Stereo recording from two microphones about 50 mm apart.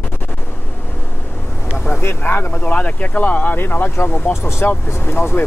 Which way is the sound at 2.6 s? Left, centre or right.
Left.